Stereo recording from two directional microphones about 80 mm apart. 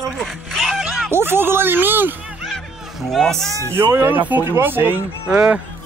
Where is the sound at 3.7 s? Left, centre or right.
Right.